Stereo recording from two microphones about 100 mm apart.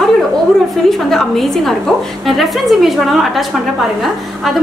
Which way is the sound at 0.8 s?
5° left (ahead or behind).